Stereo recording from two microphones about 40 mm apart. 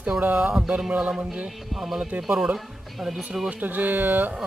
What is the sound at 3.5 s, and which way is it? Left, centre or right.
Speech, right.